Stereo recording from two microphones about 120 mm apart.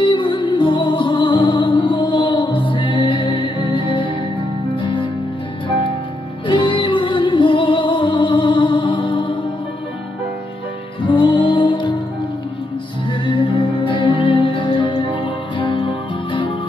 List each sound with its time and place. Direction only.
0.0 s music: 40° left (ahead or behind)
6.4 s music: 40° left (ahead or behind)
11.1 s music: 45° left (ahead or behind)
13.2 s music: 40° left (ahead or behind)